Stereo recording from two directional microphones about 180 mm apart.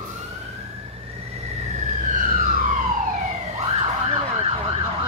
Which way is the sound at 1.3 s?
40° right (ahead or behind).